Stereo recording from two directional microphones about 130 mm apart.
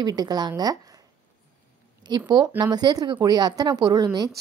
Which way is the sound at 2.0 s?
35° right (ahead or behind).